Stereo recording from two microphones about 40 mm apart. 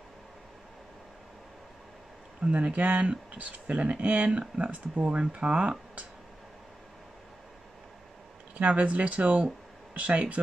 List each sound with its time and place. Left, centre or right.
2.4 s speech: right
8.5 s speech: right